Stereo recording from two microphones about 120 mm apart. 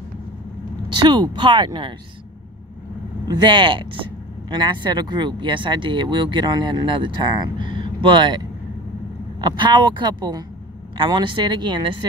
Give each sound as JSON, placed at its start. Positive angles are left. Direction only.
{"t": 0.8, "sound": "speech", "side_deg": -40}
{"t": 3.3, "sound": "speech", "side_deg": -40}
{"t": 9.4, "sound": "speech", "side_deg": -40}